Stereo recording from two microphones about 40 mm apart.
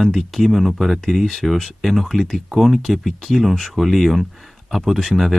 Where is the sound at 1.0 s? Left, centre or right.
Centre.